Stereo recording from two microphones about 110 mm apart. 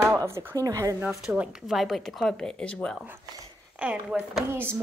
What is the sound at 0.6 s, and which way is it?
Speech, 30° right (ahead or behind).